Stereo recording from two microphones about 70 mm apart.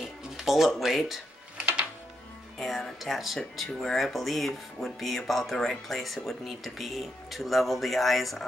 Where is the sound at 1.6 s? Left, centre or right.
Right.